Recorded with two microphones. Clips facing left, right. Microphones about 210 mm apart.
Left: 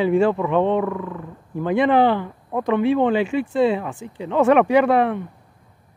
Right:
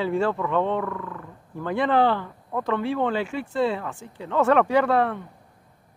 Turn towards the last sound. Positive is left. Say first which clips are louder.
# left 4 dB
turn(degrees=15)  # may be behind; listen again after turning